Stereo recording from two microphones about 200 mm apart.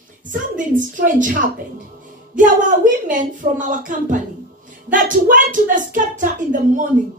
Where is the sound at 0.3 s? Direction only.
40° right (ahead or behind).